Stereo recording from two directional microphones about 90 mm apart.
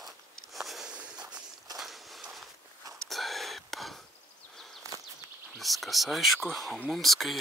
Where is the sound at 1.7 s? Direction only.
Centre (ahead or behind).